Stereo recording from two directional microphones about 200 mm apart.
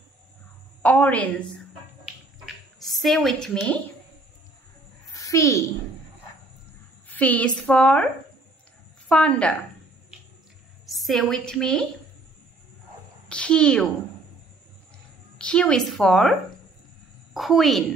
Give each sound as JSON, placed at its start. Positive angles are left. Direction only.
{"t": 0.8, "sound": "a woman's voice", "side_deg": 5}
{"t": 5.1, "sound": "a child's voice", "side_deg": 15}
{"t": 7.1, "sound": "a woman's voice", "side_deg": 10}
{"t": 9.1, "sound": "a woman's voice", "side_deg": 5}
{"t": 10.9, "sound": "a woman's voice", "side_deg": 0}
{"t": 13.3, "sound": "a child's voice", "side_deg": 5}
{"t": 15.3, "sound": "a woman's voice", "side_deg": 5}